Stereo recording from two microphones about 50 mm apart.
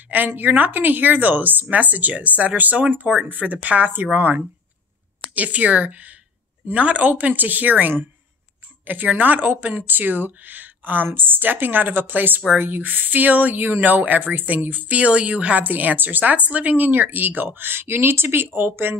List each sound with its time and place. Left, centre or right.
0.4 s speech: right